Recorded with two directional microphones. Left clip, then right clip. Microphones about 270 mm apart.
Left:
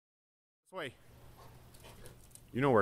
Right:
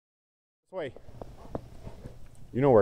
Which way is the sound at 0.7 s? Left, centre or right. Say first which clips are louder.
Right 7 dB; centre.